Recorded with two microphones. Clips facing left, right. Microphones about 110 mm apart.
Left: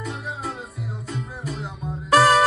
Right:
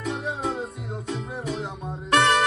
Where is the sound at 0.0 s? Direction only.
Centre (ahead or behind).